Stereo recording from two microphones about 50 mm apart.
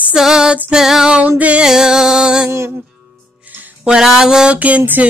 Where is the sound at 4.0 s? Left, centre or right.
Centre.